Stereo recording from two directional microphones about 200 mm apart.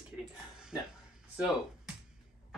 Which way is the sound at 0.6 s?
5° right (ahead or behind).